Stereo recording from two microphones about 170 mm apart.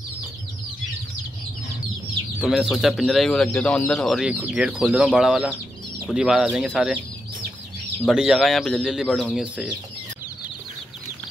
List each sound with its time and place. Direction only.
2.4 s speech: centre (ahead or behind)
8.1 s speech: centre (ahead or behind)